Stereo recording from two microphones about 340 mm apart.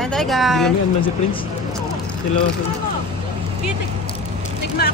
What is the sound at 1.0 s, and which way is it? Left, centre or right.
Speech, centre.